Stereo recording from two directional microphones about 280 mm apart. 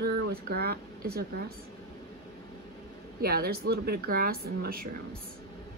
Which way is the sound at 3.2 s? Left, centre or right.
Right.